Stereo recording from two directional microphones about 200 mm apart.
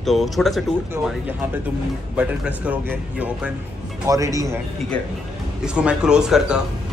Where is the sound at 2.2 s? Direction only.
5° right (ahead or behind).